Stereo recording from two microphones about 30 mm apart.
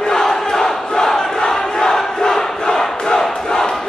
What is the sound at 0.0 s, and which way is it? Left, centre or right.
Crowd, centre.